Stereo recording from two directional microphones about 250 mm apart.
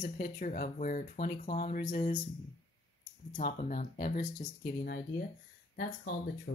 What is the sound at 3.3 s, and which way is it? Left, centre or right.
Speech, left.